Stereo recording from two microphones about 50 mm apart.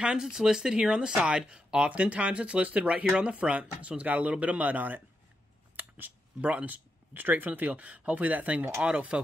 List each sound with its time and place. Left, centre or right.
0.0 s speech: centre